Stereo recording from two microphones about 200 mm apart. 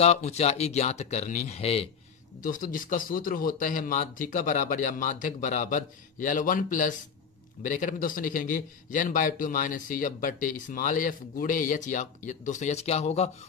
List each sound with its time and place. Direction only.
0.0 s speech: 35° left (ahead or behind)
2.4 s speech: 40° left (ahead or behind)